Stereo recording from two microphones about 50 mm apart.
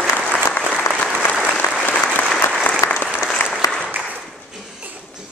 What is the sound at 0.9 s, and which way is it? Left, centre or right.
Applause, left.